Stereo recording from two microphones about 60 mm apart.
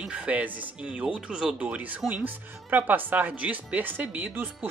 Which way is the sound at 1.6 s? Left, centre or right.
Right.